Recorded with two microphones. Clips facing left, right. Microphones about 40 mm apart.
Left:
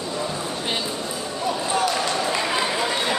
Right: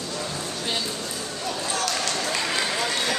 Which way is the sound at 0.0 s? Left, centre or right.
Centre.